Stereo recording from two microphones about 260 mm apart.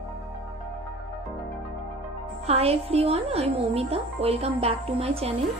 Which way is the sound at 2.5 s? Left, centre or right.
Right.